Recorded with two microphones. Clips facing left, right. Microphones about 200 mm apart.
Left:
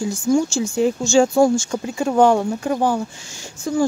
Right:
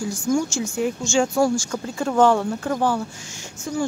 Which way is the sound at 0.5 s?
30° left (ahead or behind).